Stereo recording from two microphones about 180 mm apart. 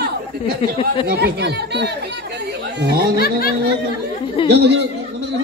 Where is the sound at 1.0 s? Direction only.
65° right (ahead or behind).